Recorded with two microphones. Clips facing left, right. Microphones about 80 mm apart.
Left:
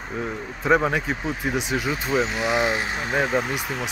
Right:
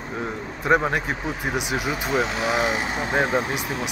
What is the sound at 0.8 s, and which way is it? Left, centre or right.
Speech, centre.